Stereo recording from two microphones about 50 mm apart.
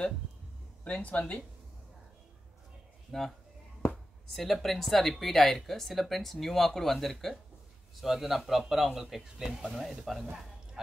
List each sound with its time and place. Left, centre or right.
0.8 s speech: left
3.1 s speech: centre